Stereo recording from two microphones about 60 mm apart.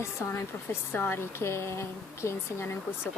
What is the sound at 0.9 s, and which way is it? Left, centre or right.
Speech, left.